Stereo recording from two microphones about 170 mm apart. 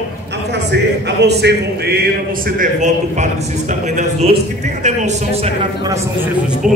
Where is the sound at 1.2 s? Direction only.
80° right.